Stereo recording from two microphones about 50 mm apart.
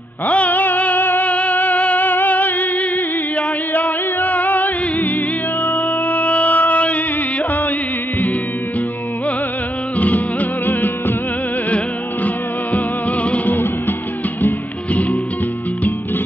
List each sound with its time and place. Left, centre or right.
0.3 s music: left
1.3 s music: left
5.6 s music: left
6.1 s a sound: left
9.9 s music: left
12.7 s music: left
13.5 s music: left
14.9 s music: left